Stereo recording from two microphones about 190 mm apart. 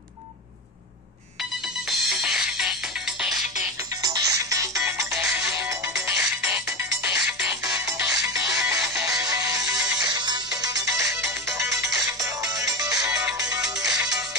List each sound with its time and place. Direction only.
1.4 s music: centre (ahead or behind)
3.9 s music: 20° right (ahead or behind)
7.6 s music: 15° right (ahead or behind)